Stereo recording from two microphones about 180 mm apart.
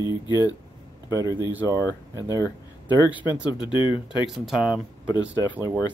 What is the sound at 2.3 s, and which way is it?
Speech, 20° left (ahead or behind).